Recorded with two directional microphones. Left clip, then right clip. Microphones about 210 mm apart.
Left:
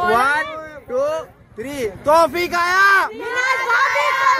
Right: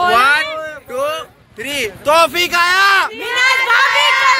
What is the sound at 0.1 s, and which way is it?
Speech, 20° left (ahead or behind).